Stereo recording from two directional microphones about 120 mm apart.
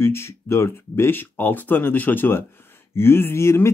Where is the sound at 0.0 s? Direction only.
20° left (ahead or behind).